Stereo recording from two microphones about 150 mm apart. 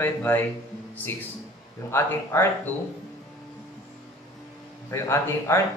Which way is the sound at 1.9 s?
15° left (ahead or behind).